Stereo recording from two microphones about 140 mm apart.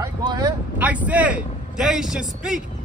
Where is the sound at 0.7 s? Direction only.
10° right (ahead or behind).